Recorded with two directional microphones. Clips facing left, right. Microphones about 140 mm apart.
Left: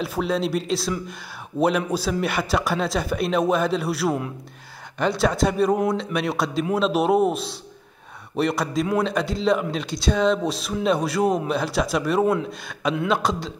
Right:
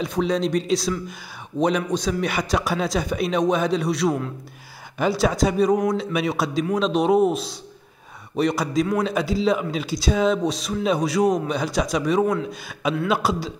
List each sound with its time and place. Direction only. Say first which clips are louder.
0.0 s a man's voice: right 2 dB; 5° left (ahead or behind)